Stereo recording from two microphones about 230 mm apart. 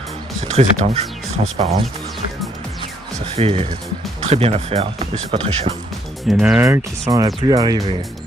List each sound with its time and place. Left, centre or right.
0.5 s speech: right
3.3 s speech: right
6.2 s speech: centre